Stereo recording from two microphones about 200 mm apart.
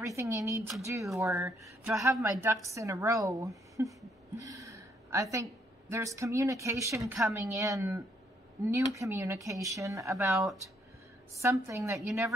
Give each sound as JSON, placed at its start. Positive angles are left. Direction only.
{"t": 0.0, "sound": "speech", "side_deg": -15}
{"t": 10.3, "sound": "speech", "side_deg": 0}
{"t": 11.4, "sound": "speech", "side_deg": -15}